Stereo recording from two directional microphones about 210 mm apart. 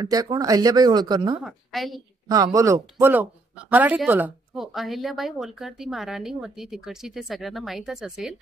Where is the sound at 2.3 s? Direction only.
15° right (ahead or behind).